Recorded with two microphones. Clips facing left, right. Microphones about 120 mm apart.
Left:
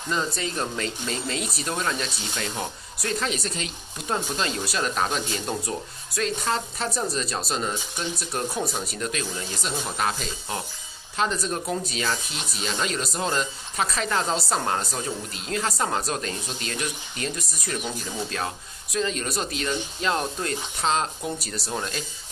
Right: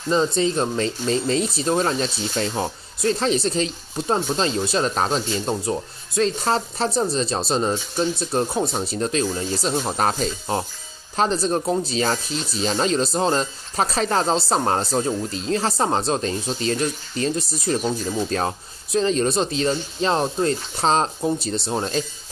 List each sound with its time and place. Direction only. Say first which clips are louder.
0.1 s speech: right 8 dB; 25° right (ahead or behind)